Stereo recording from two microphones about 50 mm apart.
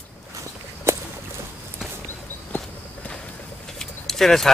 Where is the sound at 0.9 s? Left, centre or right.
Right.